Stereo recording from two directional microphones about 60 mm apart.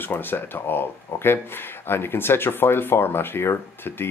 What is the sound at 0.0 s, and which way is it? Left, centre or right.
Speech, left.